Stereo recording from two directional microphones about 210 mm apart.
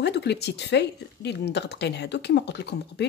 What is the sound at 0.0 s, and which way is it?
Speech, 55° left (ahead or behind).